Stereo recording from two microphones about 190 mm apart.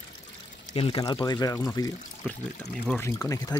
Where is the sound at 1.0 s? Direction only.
20° left (ahead or behind).